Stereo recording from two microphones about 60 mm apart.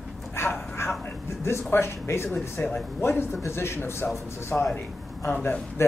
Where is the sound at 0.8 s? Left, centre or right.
Left.